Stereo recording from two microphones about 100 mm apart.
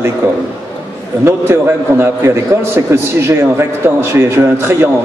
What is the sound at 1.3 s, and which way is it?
A man's voice, 25° right (ahead or behind).